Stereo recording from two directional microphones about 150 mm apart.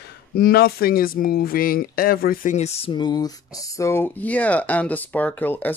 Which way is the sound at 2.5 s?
45° left (ahead or behind).